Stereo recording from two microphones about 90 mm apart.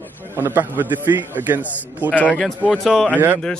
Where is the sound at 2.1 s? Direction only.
15° left (ahead or behind).